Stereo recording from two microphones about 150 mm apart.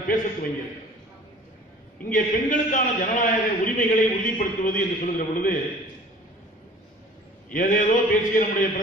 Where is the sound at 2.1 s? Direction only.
60° left (ahead or behind).